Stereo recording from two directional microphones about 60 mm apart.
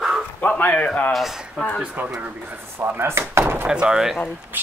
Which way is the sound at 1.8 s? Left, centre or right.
Right.